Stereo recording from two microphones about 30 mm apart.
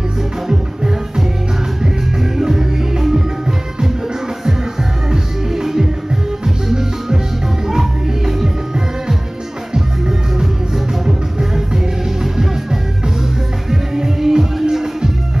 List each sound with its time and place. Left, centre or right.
0.5 s music: centre
2.3 s music: centre
5.1 s music: centre
8.3 s music: centre
13.7 s music: centre